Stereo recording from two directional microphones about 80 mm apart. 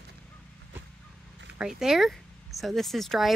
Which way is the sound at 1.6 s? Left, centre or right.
Centre.